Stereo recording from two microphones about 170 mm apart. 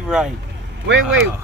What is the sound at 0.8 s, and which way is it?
Speech, 90° right.